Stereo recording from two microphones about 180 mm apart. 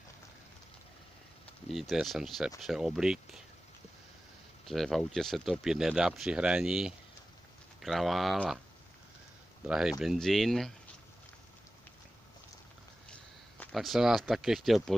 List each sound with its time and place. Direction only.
1.7 s speech: centre (ahead or behind)
4.6 s speech: centre (ahead or behind)
9.7 s speech: 5° right (ahead or behind)
13.1 s speech: 5° left (ahead or behind)